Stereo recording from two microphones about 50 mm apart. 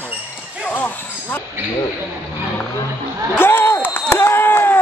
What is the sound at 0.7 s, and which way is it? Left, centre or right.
Speech, left.